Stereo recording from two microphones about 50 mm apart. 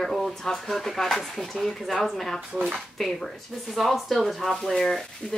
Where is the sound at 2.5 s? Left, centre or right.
Centre.